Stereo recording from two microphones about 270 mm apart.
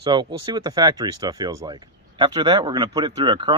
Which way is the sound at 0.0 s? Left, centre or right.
Centre.